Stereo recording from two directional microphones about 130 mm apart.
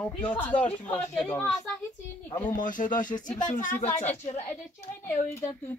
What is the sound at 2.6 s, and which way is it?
Speech, 90° left.